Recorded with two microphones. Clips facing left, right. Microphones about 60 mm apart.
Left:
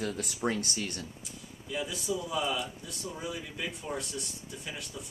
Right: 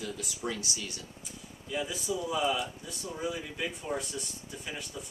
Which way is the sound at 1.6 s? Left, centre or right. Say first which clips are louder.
Even; centre.